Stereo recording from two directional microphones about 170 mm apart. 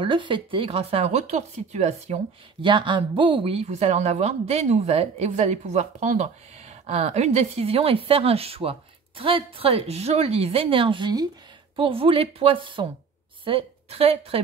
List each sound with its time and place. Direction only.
0.0 s speech: 30° right (ahead or behind)
2.6 s a woman's voice: 30° right (ahead or behind)